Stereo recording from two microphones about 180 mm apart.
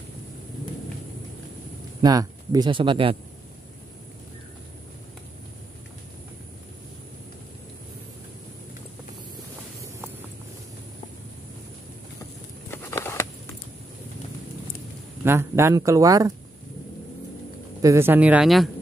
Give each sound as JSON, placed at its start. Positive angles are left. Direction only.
{"t": 2.0, "sound": "speech", "side_deg": -20}
{"t": 12.7, "sound": "patter", "side_deg": 15}
{"t": 15.2, "sound": "speech", "side_deg": -15}
{"t": 17.8, "sound": "speech", "side_deg": -15}